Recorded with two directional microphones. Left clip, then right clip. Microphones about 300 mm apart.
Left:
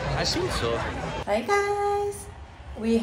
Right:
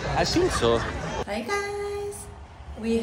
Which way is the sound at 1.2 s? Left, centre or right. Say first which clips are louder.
Left 7 dB; centre.